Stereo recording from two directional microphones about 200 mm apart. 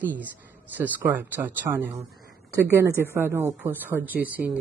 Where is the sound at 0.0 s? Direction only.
10° right (ahead or behind).